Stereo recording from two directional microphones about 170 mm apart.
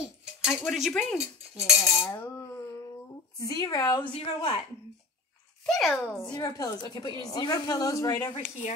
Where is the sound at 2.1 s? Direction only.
15° left (ahead or behind).